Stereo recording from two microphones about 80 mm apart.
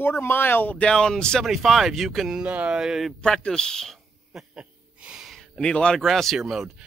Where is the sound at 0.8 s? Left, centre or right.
Centre.